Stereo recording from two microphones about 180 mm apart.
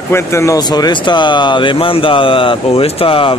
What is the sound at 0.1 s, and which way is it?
Speech, 15° left (ahead or behind).